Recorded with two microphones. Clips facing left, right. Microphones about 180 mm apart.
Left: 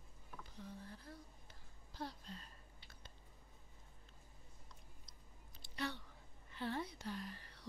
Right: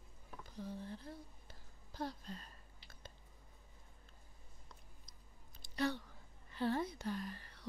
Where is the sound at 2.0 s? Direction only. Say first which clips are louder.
Right 4 dB; 45° right (ahead or behind).